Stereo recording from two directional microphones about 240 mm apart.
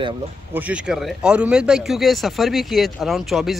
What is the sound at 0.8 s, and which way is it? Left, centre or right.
A man's voice, centre.